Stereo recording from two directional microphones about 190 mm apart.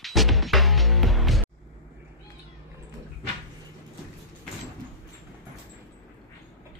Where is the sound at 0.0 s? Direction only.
Centre (ahead or behind).